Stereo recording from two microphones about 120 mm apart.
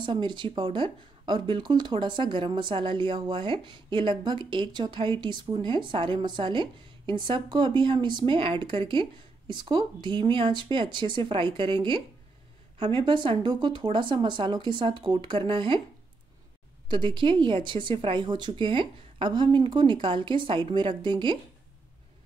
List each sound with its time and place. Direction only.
0.0 s speech: 40° right (ahead or behind)
16.9 s speech: 40° right (ahead or behind)